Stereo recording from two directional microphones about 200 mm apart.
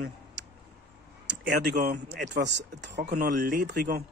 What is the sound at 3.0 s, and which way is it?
Speech, 40° right (ahead or behind).